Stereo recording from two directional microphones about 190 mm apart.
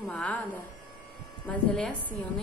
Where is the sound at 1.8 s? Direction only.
5° left (ahead or behind).